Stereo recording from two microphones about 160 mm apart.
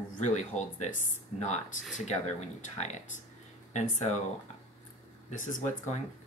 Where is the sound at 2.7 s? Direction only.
45° left (ahead or behind).